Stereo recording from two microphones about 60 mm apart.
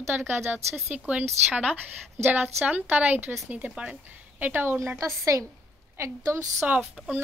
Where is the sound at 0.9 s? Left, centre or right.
Right.